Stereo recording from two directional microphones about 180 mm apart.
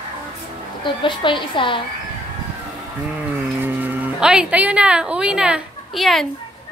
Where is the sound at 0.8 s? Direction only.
25° left (ahead or behind).